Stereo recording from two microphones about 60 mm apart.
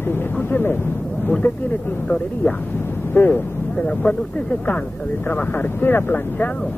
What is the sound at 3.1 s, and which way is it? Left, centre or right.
Speech, left.